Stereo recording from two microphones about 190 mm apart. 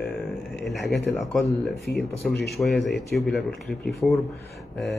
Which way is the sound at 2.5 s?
Centre (ahead or behind).